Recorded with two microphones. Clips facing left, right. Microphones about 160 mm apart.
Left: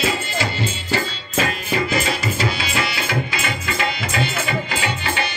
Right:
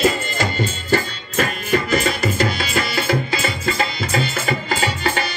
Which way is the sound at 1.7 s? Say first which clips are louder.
Right 3 dB; 45° right (ahead or behind).